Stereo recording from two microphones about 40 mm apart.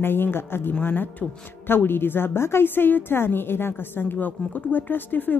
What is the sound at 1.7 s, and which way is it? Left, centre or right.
A woman's voice, left.